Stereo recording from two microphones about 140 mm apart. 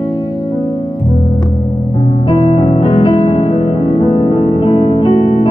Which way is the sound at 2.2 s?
40° left (ahead or behind).